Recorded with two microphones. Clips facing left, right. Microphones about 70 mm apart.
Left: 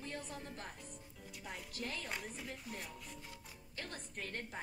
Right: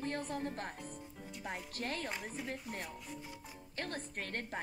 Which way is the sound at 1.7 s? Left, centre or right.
Right.